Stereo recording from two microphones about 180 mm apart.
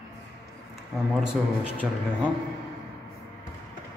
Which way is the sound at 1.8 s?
10° right (ahead or behind).